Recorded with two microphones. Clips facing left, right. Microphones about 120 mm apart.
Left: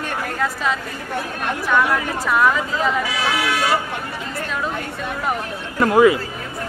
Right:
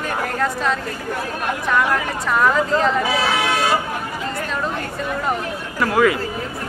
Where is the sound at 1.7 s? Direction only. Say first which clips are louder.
Left 1 dB; centre (ahead or behind).